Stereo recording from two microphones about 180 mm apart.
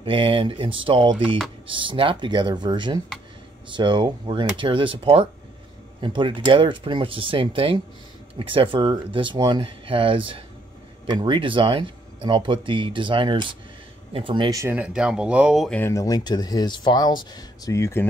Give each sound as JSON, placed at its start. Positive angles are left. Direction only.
{"t": 0.0, "sound": "speech", "side_deg": -30}
{"t": 15.8, "sound": "speech", "side_deg": 15}